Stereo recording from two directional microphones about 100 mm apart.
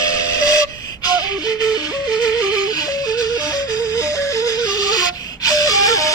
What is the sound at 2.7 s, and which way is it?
Wheeze, 40° left (ahead or behind).